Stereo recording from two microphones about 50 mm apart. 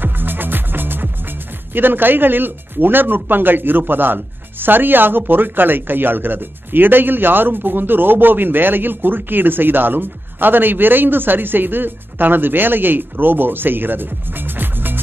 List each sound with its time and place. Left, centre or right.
0.0 s music: right
1.7 s speech: right